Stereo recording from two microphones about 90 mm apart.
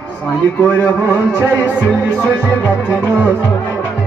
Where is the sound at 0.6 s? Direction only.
25° left (ahead or behind).